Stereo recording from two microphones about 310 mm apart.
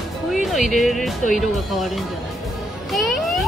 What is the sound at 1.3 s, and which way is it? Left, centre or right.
Speech, centre.